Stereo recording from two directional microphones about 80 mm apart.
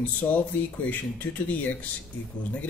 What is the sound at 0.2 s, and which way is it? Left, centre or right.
A man's voice, left.